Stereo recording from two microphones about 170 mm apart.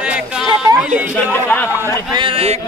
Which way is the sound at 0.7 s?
5° right (ahead or behind).